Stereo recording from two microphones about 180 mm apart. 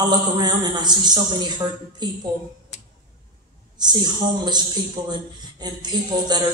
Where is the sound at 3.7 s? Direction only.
25° right (ahead or behind).